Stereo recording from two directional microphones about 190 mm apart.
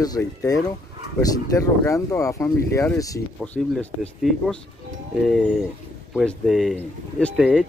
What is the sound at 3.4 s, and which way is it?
Speech, 5° left (ahead or behind).